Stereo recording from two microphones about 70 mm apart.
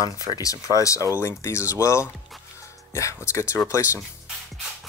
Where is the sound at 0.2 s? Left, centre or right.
Left.